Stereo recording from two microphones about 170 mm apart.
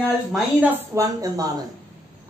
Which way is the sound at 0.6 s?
15° right (ahead or behind).